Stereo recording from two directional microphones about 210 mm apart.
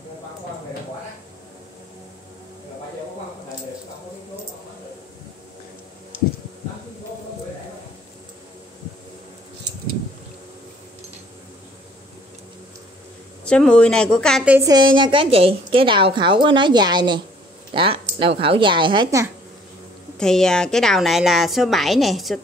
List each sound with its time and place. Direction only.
13.5 s a woman's voice: 5° left (ahead or behind)
14.6 s a woman's voice: 20° right (ahead or behind)
20.2 s a woman's voice: 5° left (ahead or behind)